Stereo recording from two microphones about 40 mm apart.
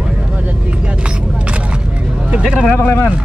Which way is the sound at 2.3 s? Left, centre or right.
Right.